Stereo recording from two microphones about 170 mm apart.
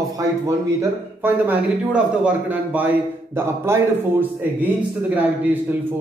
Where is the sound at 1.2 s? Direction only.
10° right (ahead or behind).